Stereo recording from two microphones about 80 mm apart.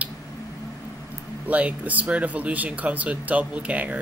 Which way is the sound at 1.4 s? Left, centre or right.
Centre.